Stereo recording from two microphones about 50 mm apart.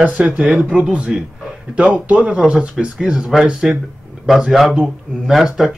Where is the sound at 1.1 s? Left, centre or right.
Centre.